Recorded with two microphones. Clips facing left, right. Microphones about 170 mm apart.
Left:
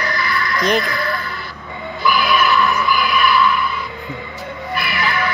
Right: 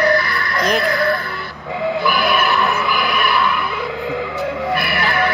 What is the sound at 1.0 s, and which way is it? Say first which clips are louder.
Music: right 5 dB; 80° right.